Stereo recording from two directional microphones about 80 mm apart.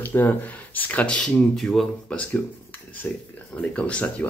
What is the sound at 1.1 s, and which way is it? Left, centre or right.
Speech, centre.